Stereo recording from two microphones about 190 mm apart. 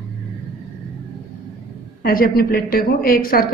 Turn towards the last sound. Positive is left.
turn(degrees=50)  # may be behind; listen again after turning